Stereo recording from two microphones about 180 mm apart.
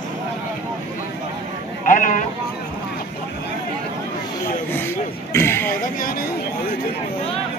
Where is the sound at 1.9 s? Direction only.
45° left (ahead or behind).